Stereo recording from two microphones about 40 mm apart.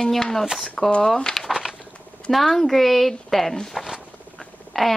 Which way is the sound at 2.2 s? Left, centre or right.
Centre.